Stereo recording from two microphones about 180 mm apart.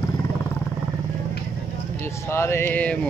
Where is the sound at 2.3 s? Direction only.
15° left (ahead or behind).